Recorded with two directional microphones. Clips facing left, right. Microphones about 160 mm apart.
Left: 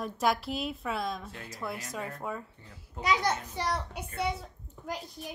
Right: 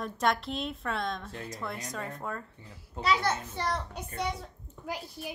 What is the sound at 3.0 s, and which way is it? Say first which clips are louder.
A child's voice: even; 15° left (ahead or behind).